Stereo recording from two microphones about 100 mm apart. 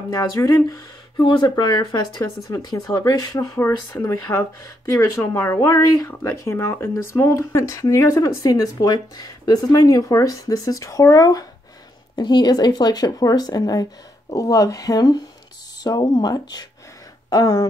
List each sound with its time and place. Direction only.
0.1 s speech: 40° left (ahead or behind)
1.1 s speech: 55° left (ahead or behind)
1.5 s speech: 40° left (ahead or behind)
3.5 s speech: 20° left (ahead or behind); by 17.6 s 40° left (ahead or behind)